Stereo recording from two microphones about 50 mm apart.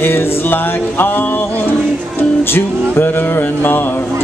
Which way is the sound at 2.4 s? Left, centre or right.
Left.